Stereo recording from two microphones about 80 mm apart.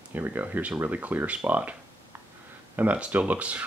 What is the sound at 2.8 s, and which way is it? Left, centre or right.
Speech, centre.